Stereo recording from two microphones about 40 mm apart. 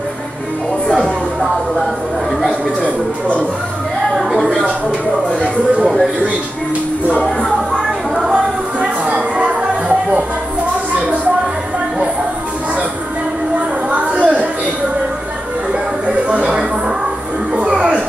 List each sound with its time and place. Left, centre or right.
8.4 s music: right
13.9 s a sound: right
16.1 s music: right
17.6 s music: right